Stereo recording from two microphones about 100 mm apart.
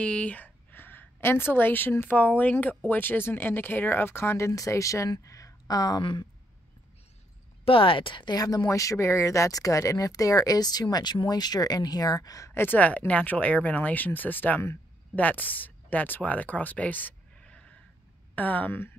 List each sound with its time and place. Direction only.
0.0 s a woman's voice: 10° left (ahead or behind); by 6.0 s 40° left (ahead or behind)
7.6 s speech: 60° left (ahead or behind); by 18.9 s 20° left (ahead or behind)